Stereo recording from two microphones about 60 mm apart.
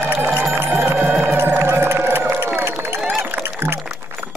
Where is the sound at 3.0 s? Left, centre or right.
Right.